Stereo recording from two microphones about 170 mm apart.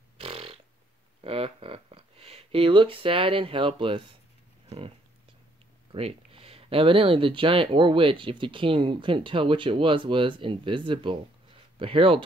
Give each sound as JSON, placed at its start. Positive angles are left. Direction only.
{"t": 0.2, "sound": "a sound", "side_deg": -35}
{"t": 1.2, "sound": "speech", "side_deg": -35}
{"t": 5.9, "sound": "speech", "side_deg": -35}